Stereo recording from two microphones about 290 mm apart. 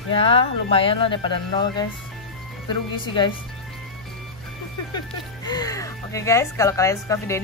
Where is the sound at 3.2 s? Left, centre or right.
Centre.